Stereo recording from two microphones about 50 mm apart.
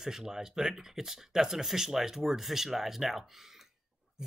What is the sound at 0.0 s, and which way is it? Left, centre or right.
Speech, centre.